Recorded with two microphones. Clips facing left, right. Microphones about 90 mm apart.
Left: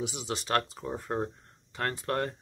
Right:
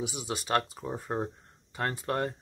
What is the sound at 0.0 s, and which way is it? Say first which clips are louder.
Speech: even; 10° right (ahead or behind).